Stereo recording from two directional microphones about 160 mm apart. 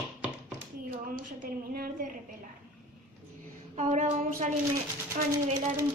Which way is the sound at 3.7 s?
50° right (ahead or behind).